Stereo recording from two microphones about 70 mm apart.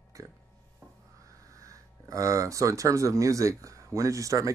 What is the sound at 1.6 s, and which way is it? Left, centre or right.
Speech, right.